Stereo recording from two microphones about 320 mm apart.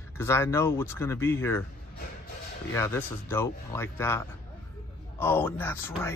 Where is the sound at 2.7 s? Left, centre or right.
Centre.